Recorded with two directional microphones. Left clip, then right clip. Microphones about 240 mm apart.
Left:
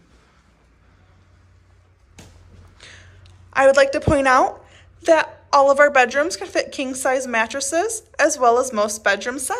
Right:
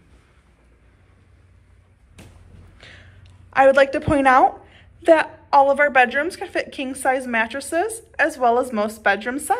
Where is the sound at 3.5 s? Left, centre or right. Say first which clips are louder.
Even; centre.